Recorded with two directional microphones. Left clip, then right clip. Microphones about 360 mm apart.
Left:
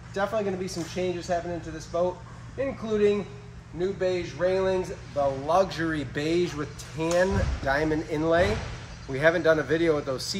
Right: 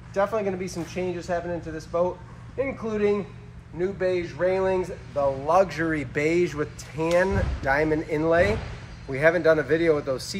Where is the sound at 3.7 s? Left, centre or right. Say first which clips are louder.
Right 2 dB; centre.